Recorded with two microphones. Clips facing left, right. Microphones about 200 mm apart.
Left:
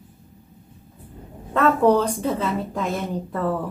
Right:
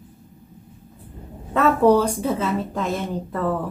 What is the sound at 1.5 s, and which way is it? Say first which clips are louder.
A woman's voice: right 1 dB; 5° right (ahead or behind).